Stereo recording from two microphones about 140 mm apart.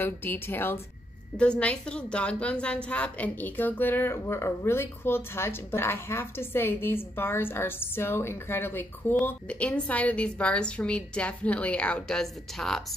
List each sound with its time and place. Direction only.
0.0 s a woman's voice: 15° left (ahead or behind)